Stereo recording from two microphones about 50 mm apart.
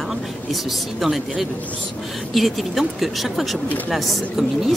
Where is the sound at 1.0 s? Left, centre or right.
Centre.